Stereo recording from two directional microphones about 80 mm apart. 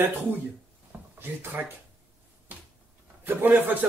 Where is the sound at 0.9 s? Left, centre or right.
Right.